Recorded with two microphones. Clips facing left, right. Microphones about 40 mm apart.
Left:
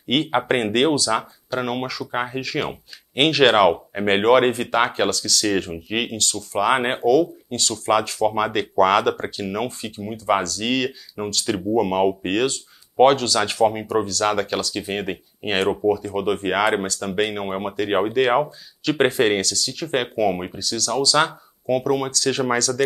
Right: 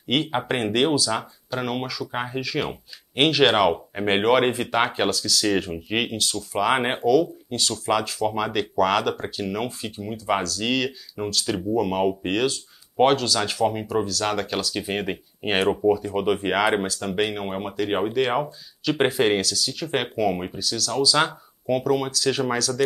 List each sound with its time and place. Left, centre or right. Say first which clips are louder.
0.3 s speech: left 4 dB; centre